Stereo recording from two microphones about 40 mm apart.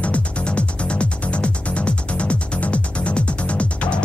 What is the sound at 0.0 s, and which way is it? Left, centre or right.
Music, left.